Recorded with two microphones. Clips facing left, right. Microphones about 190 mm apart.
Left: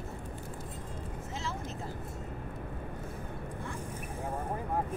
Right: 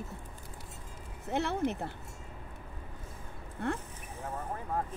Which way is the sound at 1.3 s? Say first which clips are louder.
Right 10 dB; 65° right (ahead or behind).